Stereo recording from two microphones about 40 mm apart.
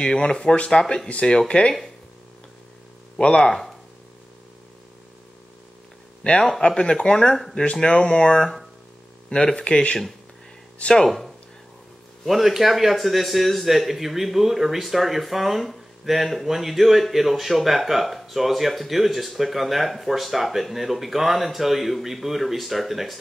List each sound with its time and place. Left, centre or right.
0.0 s speech: left
3.2 s speech: left
3.4 s speech: centre
6.2 s speech: left
9.6 s speech: left
11.1 s a man's voice: centre